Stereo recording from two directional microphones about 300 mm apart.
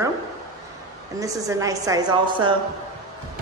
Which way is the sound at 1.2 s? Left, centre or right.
Centre.